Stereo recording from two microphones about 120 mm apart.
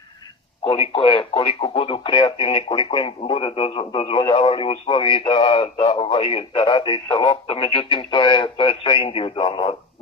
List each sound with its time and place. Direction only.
0.7 s speech: 50° left (ahead or behind)